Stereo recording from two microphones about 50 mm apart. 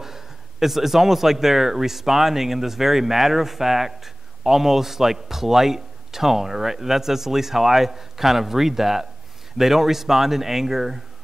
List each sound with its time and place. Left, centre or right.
0.0 s speech: centre